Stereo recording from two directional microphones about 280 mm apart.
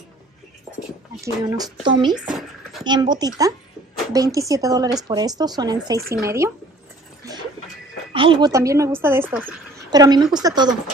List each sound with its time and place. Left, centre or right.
1.1 s a woman's voice: centre
2.2 s a sound: centre
2.8 s a woman's voice: centre
8.1 s a woman's voice: centre